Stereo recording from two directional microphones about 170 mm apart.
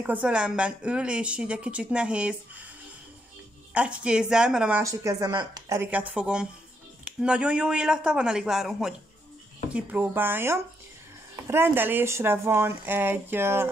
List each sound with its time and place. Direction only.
0.0 s speech: 10° right (ahead or behind)
3.7 s speech: 5° right (ahead or behind)
4.8 s a woman's voice: 20° right (ahead or behind)
5.8 s speech: 10° right (ahead or behind)